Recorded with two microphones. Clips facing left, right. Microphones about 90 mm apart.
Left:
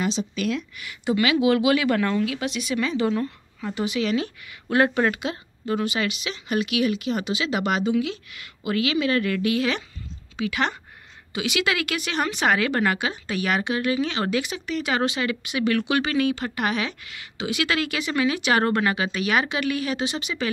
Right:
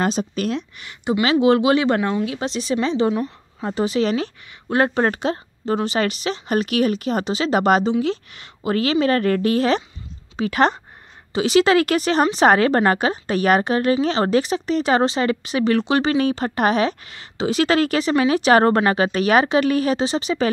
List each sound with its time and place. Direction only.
0.0 s a woman's voice: 45° right (ahead or behind); by 3.3 s 20° right (ahead or behind)
3.6 s speech: 35° right (ahead or behind)